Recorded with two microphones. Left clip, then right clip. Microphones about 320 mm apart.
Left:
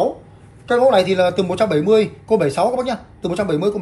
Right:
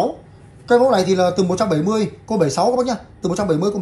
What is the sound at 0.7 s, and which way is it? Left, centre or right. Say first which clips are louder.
Speech: even; centre.